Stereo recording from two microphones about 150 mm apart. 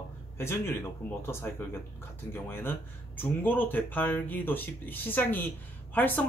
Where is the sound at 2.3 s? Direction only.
15° left (ahead or behind).